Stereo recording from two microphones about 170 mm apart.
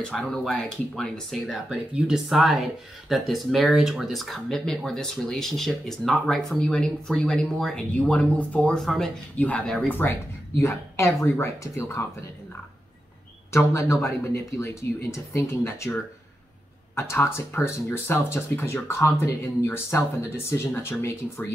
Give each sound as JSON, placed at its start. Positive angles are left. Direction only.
{"t": 0.0, "sound": "speech", "side_deg": 5}
{"t": 13.5, "sound": "speech", "side_deg": 15}